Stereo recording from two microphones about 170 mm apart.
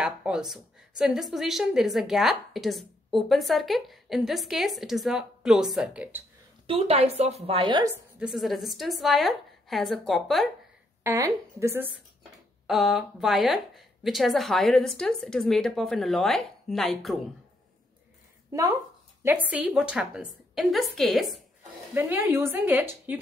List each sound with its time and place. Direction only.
0.0 s a woman's voice: 5° right (ahead or behind)
6.7 s a woman's voice: 35° right (ahead or behind)
8.2 s a woman's voice: centre (ahead or behind)
11.1 s speech: 20° right (ahead or behind)
12.2 s a woman's voice: centre (ahead or behind)
18.5 s speech: 20° right (ahead or behind)
19.2 s a woman's voice: 10° right (ahead or behind)
21.9 s speech: 10° right (ahead or behind)